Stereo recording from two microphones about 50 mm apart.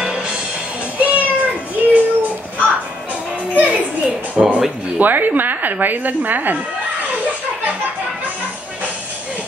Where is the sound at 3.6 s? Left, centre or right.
Right.